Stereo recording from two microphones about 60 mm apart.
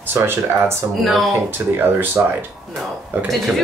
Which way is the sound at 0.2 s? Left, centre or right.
Right.